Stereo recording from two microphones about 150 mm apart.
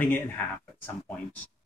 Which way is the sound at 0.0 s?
10° left (ahead or behind).